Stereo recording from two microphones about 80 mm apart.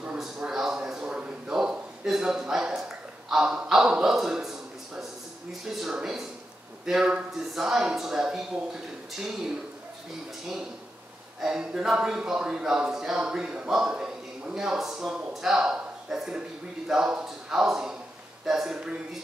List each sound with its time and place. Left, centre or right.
0.0 s a sound: centre
3.3 s a man's voice: centre
11.4 s speech: centre